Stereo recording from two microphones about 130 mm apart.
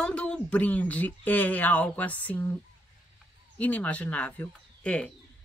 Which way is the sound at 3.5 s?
10° left (ahead or behind).